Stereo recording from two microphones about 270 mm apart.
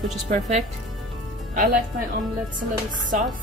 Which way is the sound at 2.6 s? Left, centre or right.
Right.